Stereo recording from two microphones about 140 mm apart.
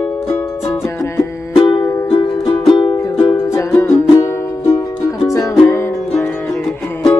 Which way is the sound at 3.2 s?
20° left (ahead or behind).